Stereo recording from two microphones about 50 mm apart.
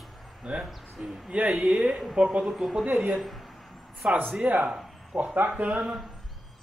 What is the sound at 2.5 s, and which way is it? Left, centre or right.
Speech, centre.